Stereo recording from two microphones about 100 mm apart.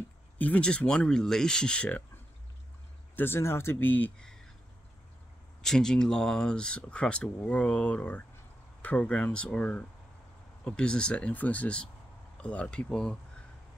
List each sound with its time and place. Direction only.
0.4 s speech: 10° left (ahead or behind)
3.2 s speech: 25° left (ahead or behind)
5.6 s speech: 5° left (ahead or behind)